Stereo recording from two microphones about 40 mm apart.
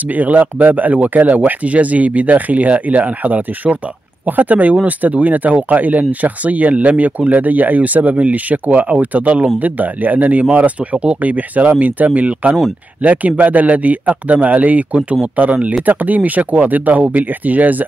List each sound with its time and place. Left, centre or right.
0.1 s speech: right